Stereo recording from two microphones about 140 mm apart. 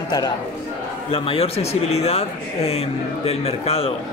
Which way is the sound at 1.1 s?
40° left (ahead or behind).